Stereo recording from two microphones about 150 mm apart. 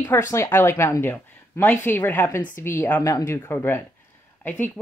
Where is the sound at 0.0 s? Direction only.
20° left (ahead or behind).